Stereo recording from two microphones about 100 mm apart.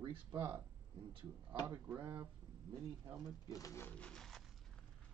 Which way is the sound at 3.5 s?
30° left (ahead or behind).